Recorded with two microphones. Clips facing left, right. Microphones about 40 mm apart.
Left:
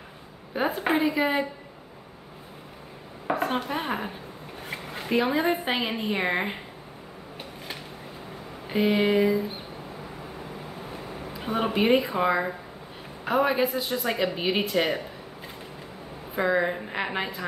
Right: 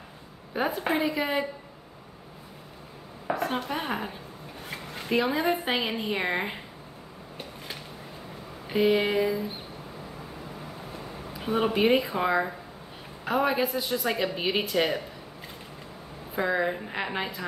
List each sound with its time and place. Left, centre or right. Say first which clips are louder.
0.5 s a woman's voice: left 2 dB; centre
3.3 s a sound: left 2 dB; left
3.6 s a woman's voice: left 1 dB; centre
8.6 s a woman's voice: even; centre
11.3 s a woman's voice: even; centre
16.3 s a woman's voice: left 2 dB; centre